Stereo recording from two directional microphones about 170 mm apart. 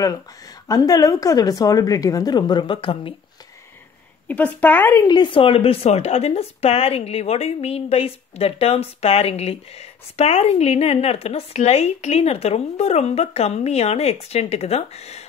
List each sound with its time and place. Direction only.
0.7 s a woman's voice: 20° left (ahead or behind)
4.3 s speech: 10° left (ahead or behind)
5.0 s speech: 25° left (ahead or behind)